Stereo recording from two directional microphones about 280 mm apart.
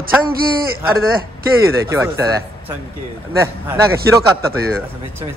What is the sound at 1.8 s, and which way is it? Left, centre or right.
A man's voice, centre.